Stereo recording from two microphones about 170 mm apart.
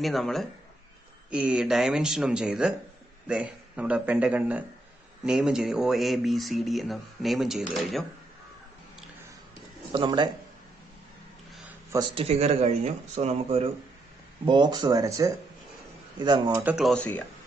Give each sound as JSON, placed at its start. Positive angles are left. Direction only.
{"t": 0.0, "sound": "a man's voice", "side_deg": 0}
{"t": 9.9, "sound": "speech", "side_deg": -25}
{"t": 11.9, "sound": "speech", "side_deg": -25}
{"t": 16.5, "sound": "speech", "side_deg": -5}